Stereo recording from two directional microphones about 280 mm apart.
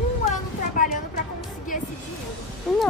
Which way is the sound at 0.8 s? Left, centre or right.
Left.